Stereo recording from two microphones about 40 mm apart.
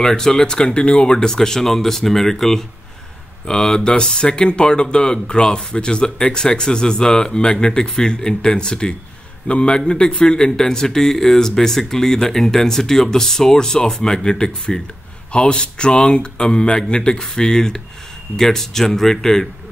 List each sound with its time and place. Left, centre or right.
0.0 s speech: centre